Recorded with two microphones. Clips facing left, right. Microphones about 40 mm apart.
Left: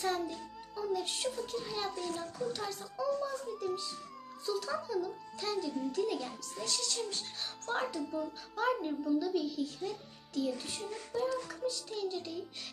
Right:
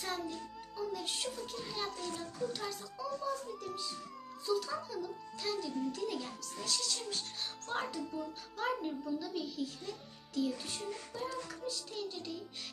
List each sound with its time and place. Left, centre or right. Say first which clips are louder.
0.0 s a child's voice: left 5 dB; centre